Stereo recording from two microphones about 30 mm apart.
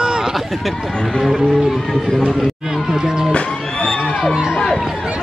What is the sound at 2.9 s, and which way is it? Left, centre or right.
Speech, right.